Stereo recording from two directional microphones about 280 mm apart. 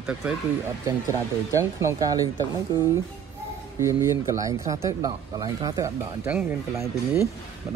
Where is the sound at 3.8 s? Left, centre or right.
Centre.